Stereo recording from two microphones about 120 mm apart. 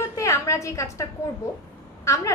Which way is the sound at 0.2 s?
25° left (ahead or behind).